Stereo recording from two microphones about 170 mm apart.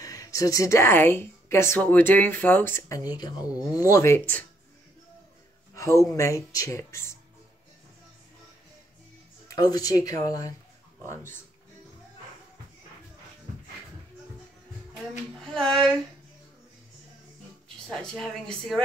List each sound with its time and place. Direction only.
0.0 s speech: 20° left (ahead or behind)
6.0 s speech: 20° left (ahead or behind)
9.5 s speech: 20° left (ahead or behind)
15.4 s speech: 5° left (ahead or behind)
17.8 s speech: 5° left (ahead or behind)